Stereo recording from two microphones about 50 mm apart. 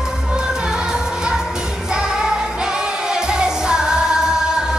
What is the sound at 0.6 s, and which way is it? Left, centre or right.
Music, centre.